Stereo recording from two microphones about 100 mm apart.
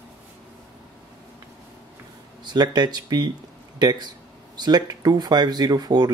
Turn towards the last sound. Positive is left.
turn(degrees=-40)  # may be behind; listen again after turning